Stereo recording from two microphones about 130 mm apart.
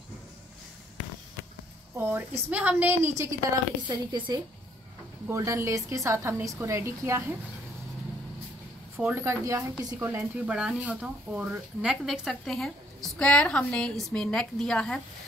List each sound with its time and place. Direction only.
2.0 s a woman's voice: 15° right (ahead or behind)
3.8 s a woman's voice: 35° right (ahead or behind)
5.3 s a woman's voice: 25° right (ahead or behind)
8.9 s a woman's voice: 20° right (ahead or behind); by 15.0 s 5° left (ahead or behind)